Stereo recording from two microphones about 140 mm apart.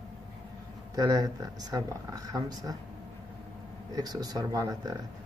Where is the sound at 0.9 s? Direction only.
25° right (ahead or behind).